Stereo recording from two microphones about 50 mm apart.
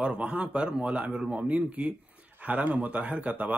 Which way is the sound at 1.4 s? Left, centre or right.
Right.